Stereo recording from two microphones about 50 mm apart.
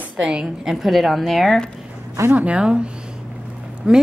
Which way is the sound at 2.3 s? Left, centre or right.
Right.